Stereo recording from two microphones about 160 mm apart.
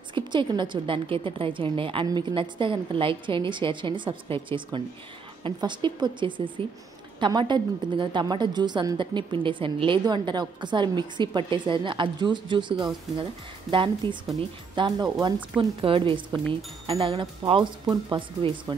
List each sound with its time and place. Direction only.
0.1 s a woman's voice: 30° right (ahead or behind)